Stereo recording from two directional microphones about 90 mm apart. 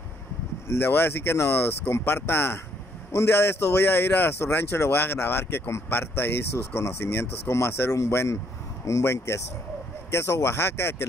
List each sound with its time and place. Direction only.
0.7 s speech: 25° left (ahead or behind)